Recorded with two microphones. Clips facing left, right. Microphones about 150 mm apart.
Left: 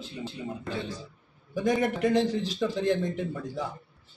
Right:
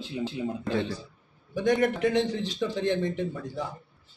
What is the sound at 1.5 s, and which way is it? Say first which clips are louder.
Speech: right 2 dB; centre (ahead or behind).